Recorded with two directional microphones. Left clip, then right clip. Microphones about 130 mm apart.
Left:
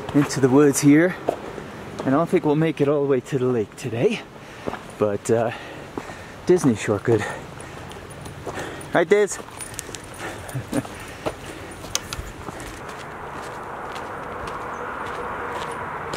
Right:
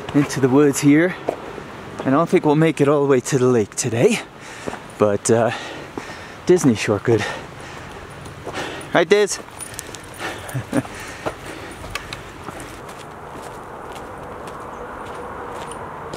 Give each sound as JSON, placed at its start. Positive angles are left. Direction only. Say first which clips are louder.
{"t": 0.3, "sound": "speech", "louder": "right 1 dB", "side_deg": -15}
{"t": 2.0, "sound": "speech", "louder": "right 3 dB", "side_deg": -35}
{"t": 6.4, "sound": "speech", "louder": "right 3 dB", "side_deg": -25}
{"t": 8.5, "sound": "clip-clop", "louder": "right 3 dB", "side_deg": -30}
{"t": 9.0, "sound": "speech", "louder": "right 2 dB", "side_deg": -15}
{"t": 10.2, "sound": "horse", "louder": "right 5 dB", "side_deg": -40}